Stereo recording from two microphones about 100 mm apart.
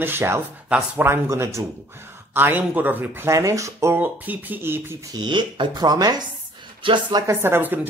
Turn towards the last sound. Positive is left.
turn(degrees=-20)  # may be behind; listen again after turning